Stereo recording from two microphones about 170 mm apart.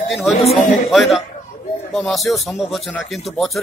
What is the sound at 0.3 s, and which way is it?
Speech, 35° left (ahead or behind).